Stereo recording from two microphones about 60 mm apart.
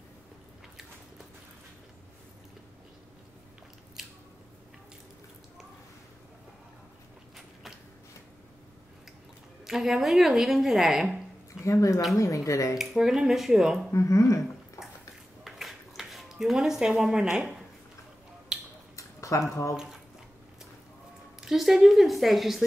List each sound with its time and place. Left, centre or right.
9.7 s a woman's voice: centre
11.6 s speech: left
12.7 s speech: centre
13.9 s speech: left
15.4 s a sound: centre
18.5 s tick-tock: centre
18.9 s a sound: left
21.4 s a woman's voice: centre